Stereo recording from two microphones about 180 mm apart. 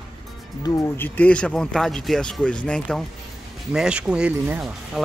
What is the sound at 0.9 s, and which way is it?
Speech, 10° left (ahead or behind).